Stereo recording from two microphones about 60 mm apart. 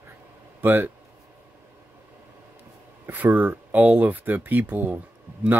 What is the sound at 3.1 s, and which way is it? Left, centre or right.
Speech, right.